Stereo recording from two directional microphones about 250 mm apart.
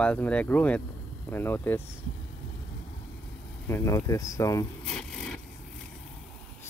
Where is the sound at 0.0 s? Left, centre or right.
Centre.